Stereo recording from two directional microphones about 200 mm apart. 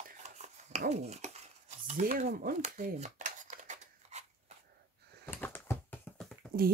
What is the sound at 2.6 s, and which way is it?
Scissors, 40° right (ahead or behind).